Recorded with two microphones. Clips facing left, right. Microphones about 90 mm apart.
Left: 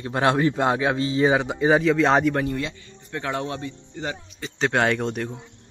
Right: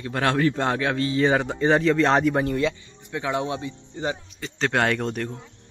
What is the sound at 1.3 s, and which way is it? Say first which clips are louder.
Speech: left 1 dB; 5° left (ahead or behind).